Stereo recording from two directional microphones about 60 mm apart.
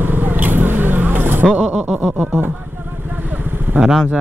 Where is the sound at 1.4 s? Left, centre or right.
Centre.